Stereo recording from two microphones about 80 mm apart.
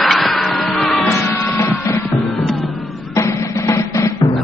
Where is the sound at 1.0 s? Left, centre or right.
Left.